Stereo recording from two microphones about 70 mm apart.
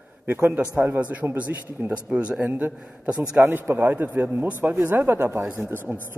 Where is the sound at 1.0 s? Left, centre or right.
Centre.